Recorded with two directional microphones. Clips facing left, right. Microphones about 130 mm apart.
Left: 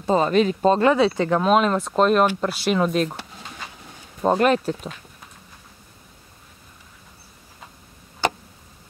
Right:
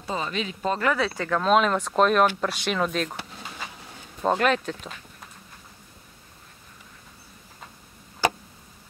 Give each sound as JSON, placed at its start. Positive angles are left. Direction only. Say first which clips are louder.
{"t": 0.0, "sound": "speech", "louder": "left 11 dB", "side_deg": 45}
{"t": 0.7, "sound": "speech", "louder": "left 5 dB", "side_deg": 25}
{"t": 1.4, "sound": "speech", "louder": "even", "side_deg": 5}
{"t": 4.4, "sound": "speech", "louder": "left 5 dB", "side_deg": 40}